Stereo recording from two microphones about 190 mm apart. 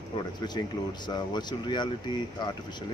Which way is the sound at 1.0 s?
20° left (ahead or behind).